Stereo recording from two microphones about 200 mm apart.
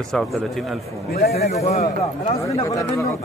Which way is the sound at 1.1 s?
50° left (ahead or behind).